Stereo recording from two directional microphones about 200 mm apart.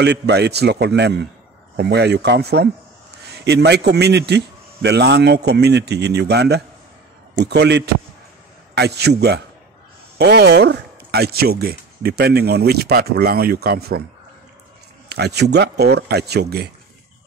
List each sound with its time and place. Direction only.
0.0 s a man's voice: 55° right (ahead or behind)
15.0 s a man's voice: 55° right (ahead or behind)